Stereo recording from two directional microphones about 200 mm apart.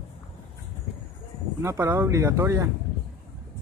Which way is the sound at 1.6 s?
10° right (ahead or behind).